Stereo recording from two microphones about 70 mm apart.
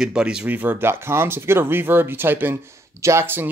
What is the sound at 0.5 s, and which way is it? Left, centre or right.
Speech, right.